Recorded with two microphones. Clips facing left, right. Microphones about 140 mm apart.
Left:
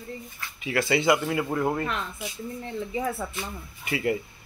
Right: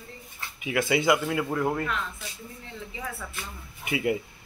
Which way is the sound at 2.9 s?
35° left (ahead or behind).